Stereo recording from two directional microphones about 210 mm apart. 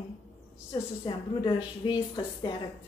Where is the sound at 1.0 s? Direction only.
20° left (ahead or behind).